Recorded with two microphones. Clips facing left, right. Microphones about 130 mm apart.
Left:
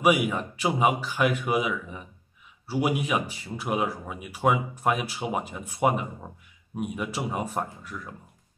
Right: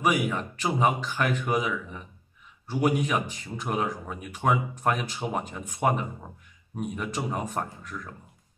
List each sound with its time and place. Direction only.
0.0 s speech: 10° left (ahead or behind)